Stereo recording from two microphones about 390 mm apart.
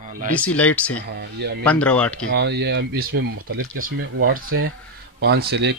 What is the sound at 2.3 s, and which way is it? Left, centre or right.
Speech, right.